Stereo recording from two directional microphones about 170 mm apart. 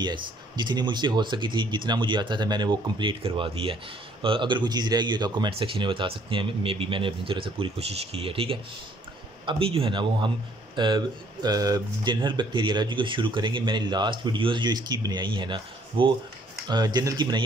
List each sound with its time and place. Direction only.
0.0 s speech: 25° right (ahead or behind)